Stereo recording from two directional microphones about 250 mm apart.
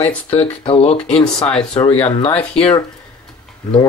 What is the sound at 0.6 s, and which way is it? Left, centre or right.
Speech, left.